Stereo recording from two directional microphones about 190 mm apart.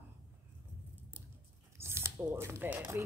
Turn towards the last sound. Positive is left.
turn(degrees=-10)  # may be behind; listen again after turning